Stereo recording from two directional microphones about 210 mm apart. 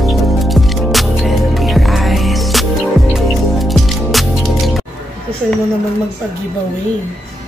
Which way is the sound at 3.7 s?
Centre (ahead or behind).